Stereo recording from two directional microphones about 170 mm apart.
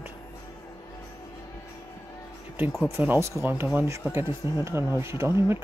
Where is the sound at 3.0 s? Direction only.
15° right (ahead or behind).